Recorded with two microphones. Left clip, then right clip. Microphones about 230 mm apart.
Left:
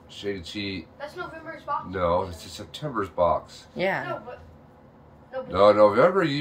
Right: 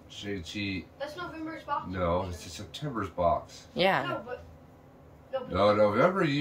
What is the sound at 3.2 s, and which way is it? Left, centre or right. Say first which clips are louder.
Speech: left 5 dB; centre.